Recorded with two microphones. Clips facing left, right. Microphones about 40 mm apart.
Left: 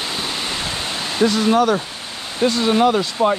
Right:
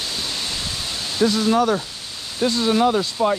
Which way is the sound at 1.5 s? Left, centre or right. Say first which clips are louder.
Left 3 dB; left.